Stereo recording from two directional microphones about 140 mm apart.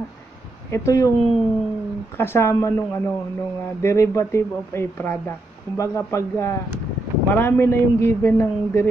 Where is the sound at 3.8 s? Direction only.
20° left (ahead or behind).